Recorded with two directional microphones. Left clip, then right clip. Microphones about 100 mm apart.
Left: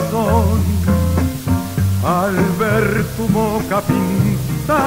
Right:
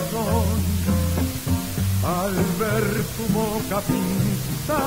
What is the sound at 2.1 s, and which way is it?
Music, 20° right (ahead or behind).